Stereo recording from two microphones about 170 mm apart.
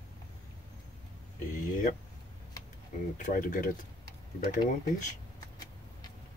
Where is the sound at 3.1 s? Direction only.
50° left (ahead or behind).